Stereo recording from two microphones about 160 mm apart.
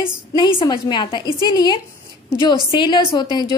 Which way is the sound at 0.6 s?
30° left (ahead or behind).